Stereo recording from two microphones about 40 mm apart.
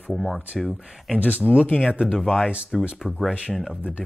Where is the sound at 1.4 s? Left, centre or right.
Right.